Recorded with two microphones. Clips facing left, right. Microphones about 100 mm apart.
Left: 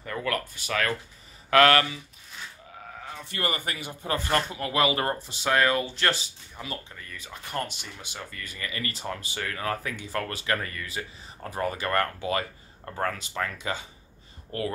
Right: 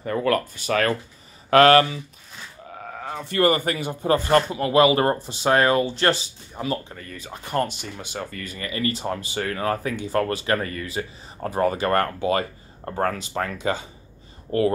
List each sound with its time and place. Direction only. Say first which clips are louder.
0.0 s speech: right 8 dB; 35° right (ahead or behind)
2.7 s speech: right 10 dB; 50° right (ahead or behind); by 13.3 s 30° right (ahead or behind)
13.3 s speech: right 4 dB; 45° right (ahead or behind)
13.6 s speech: right 7 dB; 30° right (ahead or behind)